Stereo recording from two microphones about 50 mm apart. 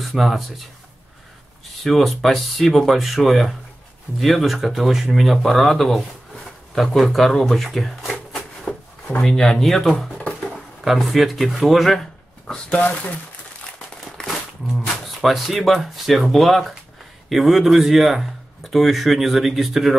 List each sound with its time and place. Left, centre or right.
0.0 s speech: centre
1.8 s speech: centre
9.2 s speech: centre
12.6 s speech: left
15.1 s speech: centre